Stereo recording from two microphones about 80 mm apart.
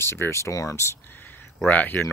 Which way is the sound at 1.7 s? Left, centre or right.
Left.